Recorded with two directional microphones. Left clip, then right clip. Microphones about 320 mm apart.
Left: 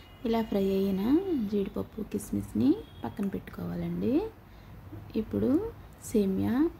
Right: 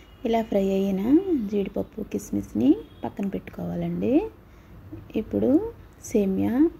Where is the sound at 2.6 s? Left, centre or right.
Centre.